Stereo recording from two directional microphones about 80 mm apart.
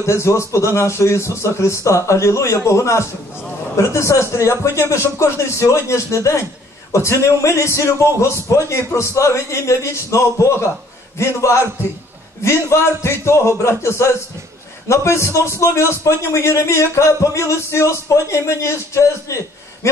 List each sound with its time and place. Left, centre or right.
0.0 s a man's voice: left